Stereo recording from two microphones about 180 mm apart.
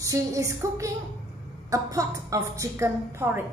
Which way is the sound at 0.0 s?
20° right (ahead or behind).